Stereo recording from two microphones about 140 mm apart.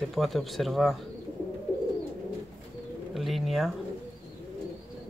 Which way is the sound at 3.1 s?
Centre (ahead or behind).